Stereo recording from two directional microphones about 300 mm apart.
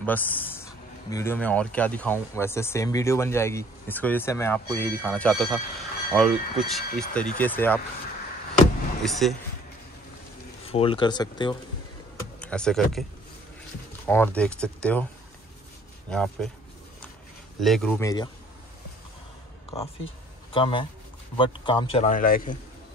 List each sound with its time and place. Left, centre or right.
0.0 s speech: centre
9.2 s speech: centre
10.7 s speech: centre
12.4 s speech: centre
14.0 s speech: centre
16.1 s speech: centre
17.6 s speech: centre
20.5 s a man's voice: centre